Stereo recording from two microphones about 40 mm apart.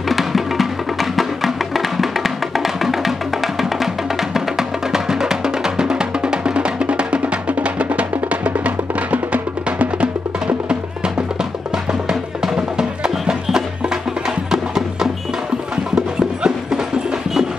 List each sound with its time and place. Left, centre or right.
0.1 s music: centre; by 10.0 s right
12.7 s music: centre